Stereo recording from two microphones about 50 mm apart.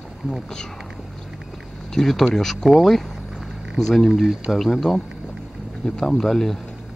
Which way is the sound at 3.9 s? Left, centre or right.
Centre.